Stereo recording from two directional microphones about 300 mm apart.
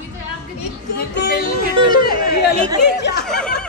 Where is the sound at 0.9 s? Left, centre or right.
Left.